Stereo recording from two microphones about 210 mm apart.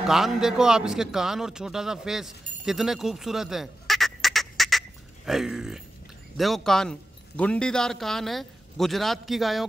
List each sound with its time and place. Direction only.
0.0 s a man's voice: centre (ahead or behind)